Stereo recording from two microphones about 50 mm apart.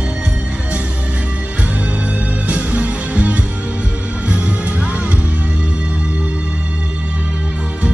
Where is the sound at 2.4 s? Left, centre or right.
Right.